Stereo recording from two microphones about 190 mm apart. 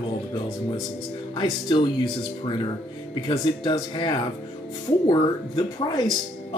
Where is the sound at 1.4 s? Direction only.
25° left (ahead or behind).